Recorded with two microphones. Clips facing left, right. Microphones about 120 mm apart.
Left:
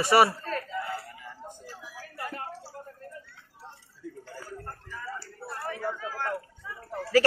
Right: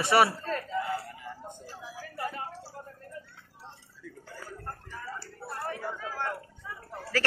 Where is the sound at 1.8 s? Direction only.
25° right (ahead or behind).